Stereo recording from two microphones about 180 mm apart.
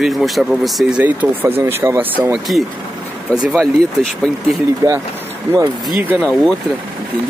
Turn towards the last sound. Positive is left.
turn(degrees=0)  # may be behind; listen again after turning